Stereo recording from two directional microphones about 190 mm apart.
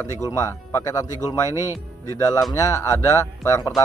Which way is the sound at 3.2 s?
15° left (ahead or behind).